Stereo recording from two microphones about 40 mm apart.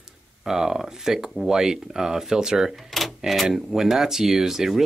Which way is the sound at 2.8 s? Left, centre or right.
Centre.